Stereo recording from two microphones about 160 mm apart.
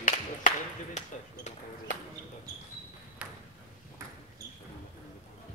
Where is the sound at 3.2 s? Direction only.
5° right (ahead or behind).